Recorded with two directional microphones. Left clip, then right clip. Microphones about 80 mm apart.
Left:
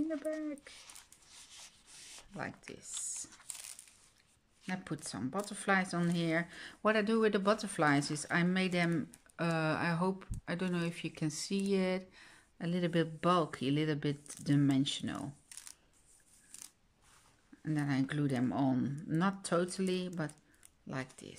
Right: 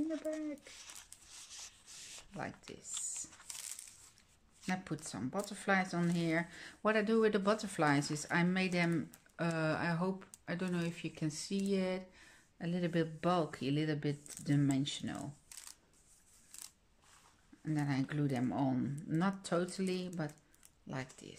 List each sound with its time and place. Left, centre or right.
1.5 s rub: centre
4.6 s speech: left
9.4 s speech: left
17.6 s speech: left
20.8 s speech: left